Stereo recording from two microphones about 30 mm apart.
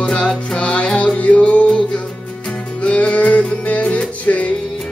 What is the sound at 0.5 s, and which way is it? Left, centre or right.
Music, left.